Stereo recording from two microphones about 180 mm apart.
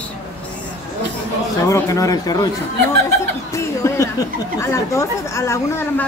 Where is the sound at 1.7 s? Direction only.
20° left (ahead or behind).